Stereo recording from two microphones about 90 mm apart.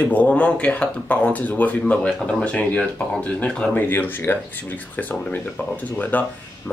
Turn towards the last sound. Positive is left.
turn(degrees=20)  # may be behind; listen again after turning